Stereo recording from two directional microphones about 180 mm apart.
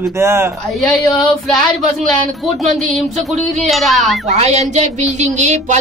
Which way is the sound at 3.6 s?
Centre (ahead or behind).